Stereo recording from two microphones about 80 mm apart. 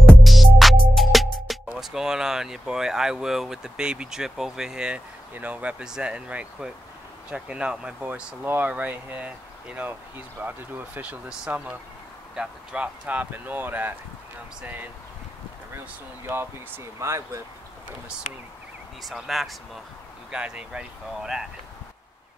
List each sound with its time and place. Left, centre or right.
0.2 s music: centre
1.7 s speech: centre; by 14.9 s right
16.3 s speech: right
19.0 s speech: centre